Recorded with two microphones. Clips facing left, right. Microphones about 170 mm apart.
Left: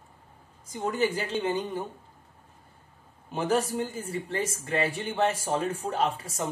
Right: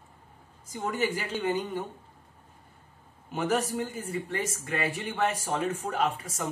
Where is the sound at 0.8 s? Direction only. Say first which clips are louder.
Left 2 dB; 30° left (ahead or behind).